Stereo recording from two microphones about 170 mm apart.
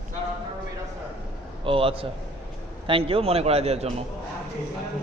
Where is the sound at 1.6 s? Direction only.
35° right (ahead or behind).